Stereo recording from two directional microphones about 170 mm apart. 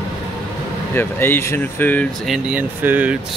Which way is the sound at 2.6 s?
10° right (ahead or behind).